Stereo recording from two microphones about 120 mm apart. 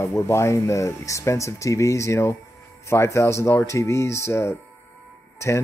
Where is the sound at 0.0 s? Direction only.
25° left (ahead or behind).